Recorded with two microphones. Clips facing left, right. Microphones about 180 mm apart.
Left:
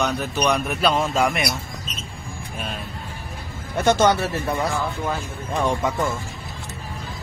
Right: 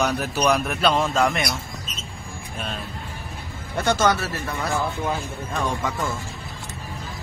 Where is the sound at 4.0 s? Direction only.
25° left (ahead or behind).